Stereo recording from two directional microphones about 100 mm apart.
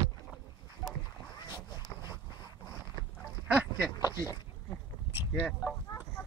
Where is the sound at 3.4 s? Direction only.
15° right (ahead or behind).